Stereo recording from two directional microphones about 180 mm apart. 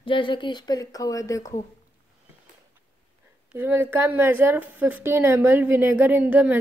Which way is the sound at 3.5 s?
15° right (ahead or behind).